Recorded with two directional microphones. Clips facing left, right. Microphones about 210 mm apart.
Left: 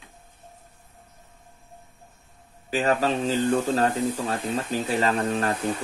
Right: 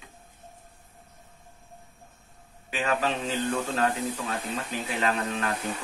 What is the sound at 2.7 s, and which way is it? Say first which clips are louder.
Speech: left 5 dB; 40° left (ahead or behind).